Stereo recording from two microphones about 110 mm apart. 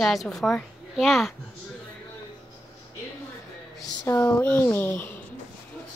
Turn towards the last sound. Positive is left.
turn(degrees=20)  # may be behind; listen again after turning